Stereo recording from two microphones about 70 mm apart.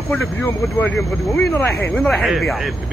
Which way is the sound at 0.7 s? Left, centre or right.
Left.